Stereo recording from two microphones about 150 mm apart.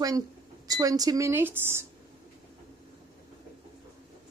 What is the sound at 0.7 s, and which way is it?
Speech, 25° right (ahead or behind).